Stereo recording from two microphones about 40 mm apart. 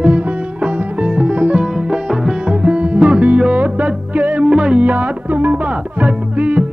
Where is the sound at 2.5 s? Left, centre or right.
Right.